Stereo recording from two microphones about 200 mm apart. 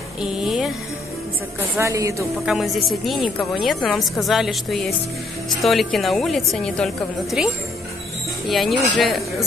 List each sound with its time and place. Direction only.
0.2 s a sound: centre (ahead or behind)
1.8 s a woman's voice: 15° right (ahead or behind)
2.4 s a woman's voice: centre (ahead or behind)
8.5 s a woman's voice: centre (ahead or behind)